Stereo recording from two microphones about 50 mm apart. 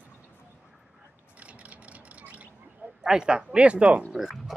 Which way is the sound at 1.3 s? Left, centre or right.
Right.